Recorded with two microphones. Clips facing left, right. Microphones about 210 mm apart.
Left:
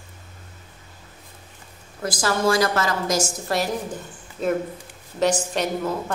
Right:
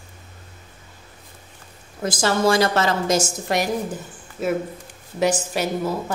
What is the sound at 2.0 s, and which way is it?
A woman's voice, 25° right (ahead or behind).